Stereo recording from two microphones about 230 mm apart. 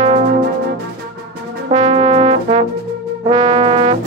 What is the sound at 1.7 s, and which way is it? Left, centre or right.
Brass instrument, right.